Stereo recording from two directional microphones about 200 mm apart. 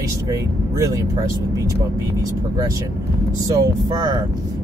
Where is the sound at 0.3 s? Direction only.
15° right (ahead or behind).